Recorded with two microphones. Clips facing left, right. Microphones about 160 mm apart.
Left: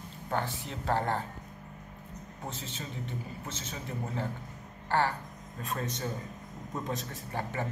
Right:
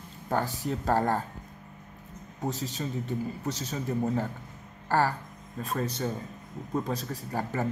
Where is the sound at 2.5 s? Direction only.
40° right (ahead or behind).